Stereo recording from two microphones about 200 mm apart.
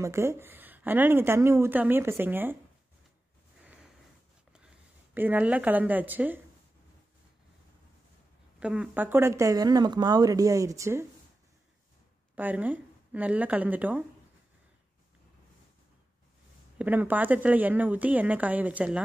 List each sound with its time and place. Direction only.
0.0 s speech: 15° right (ahead or behind)
4.5 s speech: 5° right (ahead or behind)
8.5 s speech: 5° right (ahead or behind)
12.4 s speech: 10° right (ahead or behind)
16.7 s speech: 10° right (ahead or behind)